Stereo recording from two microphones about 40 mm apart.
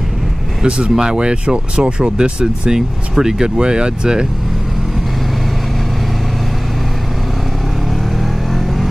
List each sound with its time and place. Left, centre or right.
0.6 s speech: right
8.2 s vehicle: centre